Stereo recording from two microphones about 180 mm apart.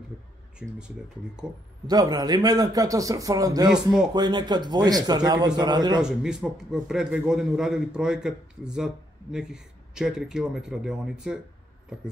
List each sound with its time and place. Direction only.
0.6 s a man's voice: 5° right (ahead or behind)
1.9 s a man's voice: 20° right (ahead or behind)
3.7 s a man's voice: 5° right (ahead or behind)
4.1 s a man's voice: 25° right (ahead or behind)
6.0 s a man's voice: 5° right (ahead or behind)